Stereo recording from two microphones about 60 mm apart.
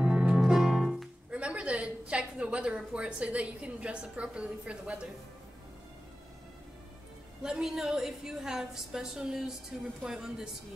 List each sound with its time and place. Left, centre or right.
0.0 s music: centre
0.4 s music: centre
1.3 s a woman's voice: centre
7.4 s a woman's voice: centre